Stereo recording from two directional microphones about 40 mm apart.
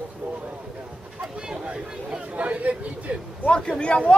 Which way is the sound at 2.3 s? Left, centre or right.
Right.